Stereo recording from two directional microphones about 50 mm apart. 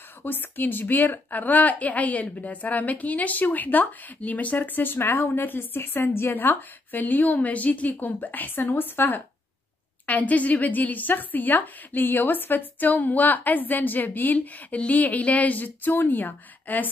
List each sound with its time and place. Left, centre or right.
0.2 s a woman's voice: left
6.3 s a woman's voice: left
10.0 s a woman's voice: left